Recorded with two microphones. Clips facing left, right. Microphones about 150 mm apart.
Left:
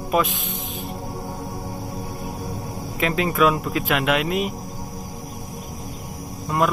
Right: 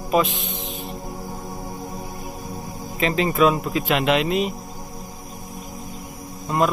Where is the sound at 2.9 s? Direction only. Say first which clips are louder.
Right 1 dB; 5° left (ahead or behind).